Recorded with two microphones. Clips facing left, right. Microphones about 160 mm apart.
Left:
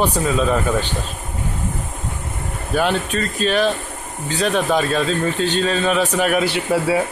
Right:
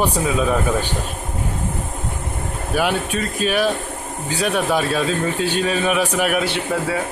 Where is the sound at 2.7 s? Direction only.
10° right (ahead or behind).